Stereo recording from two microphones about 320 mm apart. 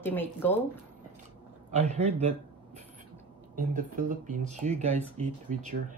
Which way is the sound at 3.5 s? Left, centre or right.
Right.